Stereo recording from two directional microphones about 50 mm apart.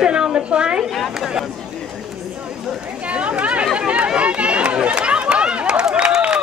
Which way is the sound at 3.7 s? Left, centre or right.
Right.